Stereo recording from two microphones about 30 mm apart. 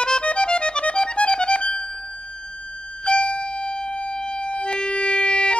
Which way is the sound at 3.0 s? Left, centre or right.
Left.